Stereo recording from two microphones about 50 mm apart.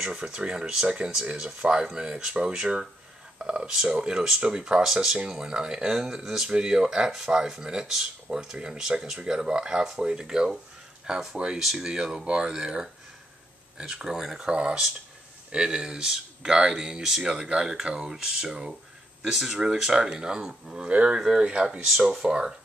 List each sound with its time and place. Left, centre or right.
0.1 s speech: centre
14.5 s speech: centre